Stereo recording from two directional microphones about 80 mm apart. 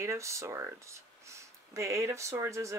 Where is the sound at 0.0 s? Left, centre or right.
Right.